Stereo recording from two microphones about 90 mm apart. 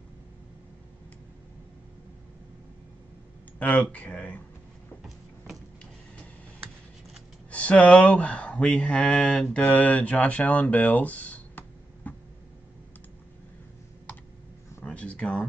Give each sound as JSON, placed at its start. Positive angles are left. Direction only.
{"t": 3.5, "sound": "speech", "side_deg": 15}
{"t": 7.5, "sound": "speech", "side_deg": 15}
{"t": 14.9, "sound": "a sound", "side_deg": 15}